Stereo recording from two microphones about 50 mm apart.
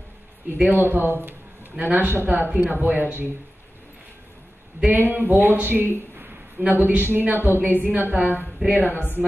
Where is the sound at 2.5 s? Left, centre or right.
Right.